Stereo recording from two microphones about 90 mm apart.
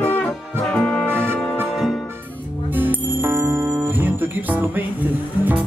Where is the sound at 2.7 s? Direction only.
20° right (ahead or behind).